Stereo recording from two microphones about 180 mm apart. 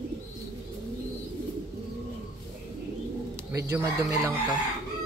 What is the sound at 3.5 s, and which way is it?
Speech, 15° right (ahead or behind).